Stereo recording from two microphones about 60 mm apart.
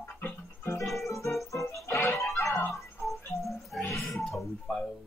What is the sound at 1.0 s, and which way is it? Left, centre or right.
Music, left.